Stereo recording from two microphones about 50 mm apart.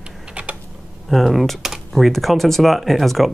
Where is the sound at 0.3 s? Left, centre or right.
Right.